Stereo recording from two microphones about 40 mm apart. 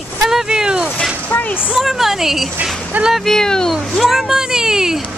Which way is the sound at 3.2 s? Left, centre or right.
Centre.